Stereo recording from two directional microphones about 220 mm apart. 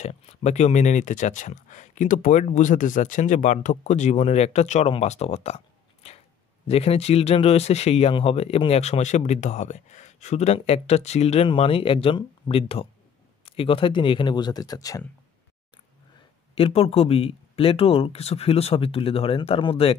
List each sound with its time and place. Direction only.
0.0 s speech: 30° left (ahead or behind)
6.0 s a sound: 30° left (ahead or behind)
6.7 s speech: 25° left (ahead or behind)
16.5 s speech: 25° left (ahead or behind)